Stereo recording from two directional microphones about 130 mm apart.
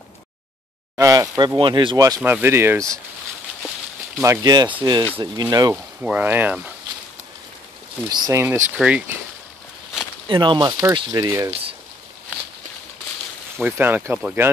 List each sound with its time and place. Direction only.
0.9 s speech: 25° right (ahead or behind)
1.6 s speech: 40° right (ahead or behind)
2.0 s speech: 25° right (ahead or behind)
2.2 s speech: 15° right (ahead or behind)
4.2 s speech: 25° right (ahead or behind)
6.0 s speech: 15° right (ahead or behind)
8.1 s speech: 35° right (ahead or behind)
8.4 s speech: 20° right (ahead or behind)
8.7 s speech: 10° right (ahead or behind)
10.2 s speech: 35° right (ahead or behind)
13.7 s speech: 15° right (ahead or behind)